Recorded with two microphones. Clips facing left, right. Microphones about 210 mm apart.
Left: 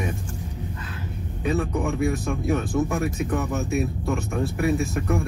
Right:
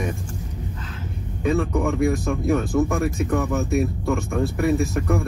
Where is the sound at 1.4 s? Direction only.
45° right (ahead or behind).